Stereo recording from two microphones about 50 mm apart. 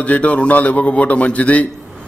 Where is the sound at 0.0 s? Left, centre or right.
Left.